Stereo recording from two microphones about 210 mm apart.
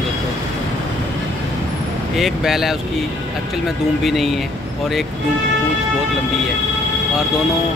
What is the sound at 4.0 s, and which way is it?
Speech, centre (ahead or behind).